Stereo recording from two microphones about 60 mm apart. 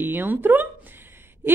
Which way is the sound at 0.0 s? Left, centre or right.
Right.